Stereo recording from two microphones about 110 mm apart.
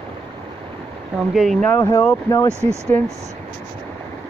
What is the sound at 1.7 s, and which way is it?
Speech, 20° left (ahead or behind).